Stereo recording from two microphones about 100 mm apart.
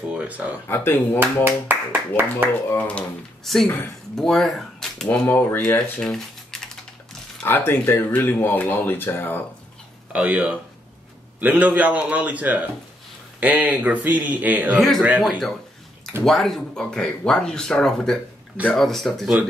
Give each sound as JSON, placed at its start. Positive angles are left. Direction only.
{"t": 0.1, "sound": "speech", "side_deg": -15}
{"t": 0.7, "sound": "speech", "side_deg": 25}
{"t": 1.2, "sound": "speech", "side_deg": -20}
{"t": 3.4, "sound": "speech", "side_deg": 0}
{"t": 5.9, "sound": "a sound", "side_deg": 5}
{"t": 7.4, "sound": "speech", "side_deg": 20}
{"t": 10.1, "sound": "speech", "side_deg": -15}
{"t": 14.8, "sound": "speech", "side_deg": 0}